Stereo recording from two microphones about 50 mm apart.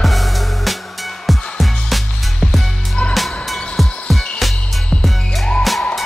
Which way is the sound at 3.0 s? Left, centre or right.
Left.